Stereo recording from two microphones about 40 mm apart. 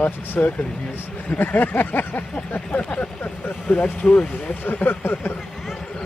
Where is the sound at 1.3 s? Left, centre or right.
Left.